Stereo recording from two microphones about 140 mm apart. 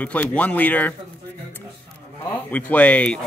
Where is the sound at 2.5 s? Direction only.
10° left (ahead or behind).